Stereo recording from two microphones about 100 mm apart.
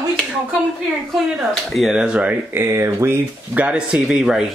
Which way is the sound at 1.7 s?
5° right (ahead or behind).